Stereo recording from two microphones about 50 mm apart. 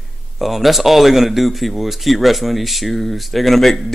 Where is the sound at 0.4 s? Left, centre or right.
Centre.